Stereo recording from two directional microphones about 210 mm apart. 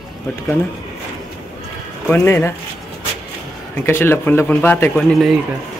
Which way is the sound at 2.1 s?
10° left (ahead or behind).